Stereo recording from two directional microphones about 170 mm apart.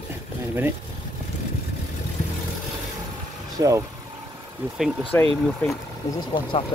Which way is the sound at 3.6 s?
20° right (ahead or behind).